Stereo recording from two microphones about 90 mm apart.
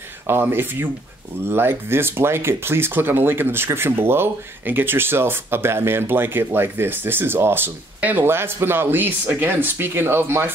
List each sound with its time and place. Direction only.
0.3 s speech: 25° right (ahead or behind)